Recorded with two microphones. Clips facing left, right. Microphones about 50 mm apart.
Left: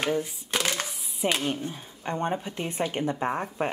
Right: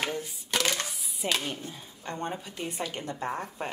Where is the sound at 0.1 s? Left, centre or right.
Left.